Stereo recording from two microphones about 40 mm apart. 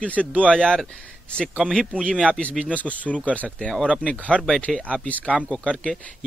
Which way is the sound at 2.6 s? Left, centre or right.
Left.